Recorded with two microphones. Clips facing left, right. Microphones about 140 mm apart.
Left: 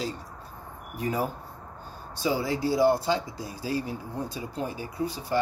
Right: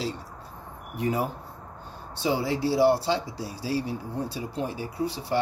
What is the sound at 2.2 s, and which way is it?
Speech, 25° right (ahead or behind).